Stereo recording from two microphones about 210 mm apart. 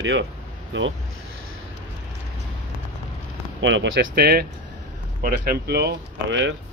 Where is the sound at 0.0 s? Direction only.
60° right (ahead or behind).